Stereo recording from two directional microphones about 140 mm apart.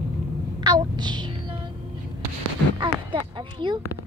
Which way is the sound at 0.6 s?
30° right (ahead or behind).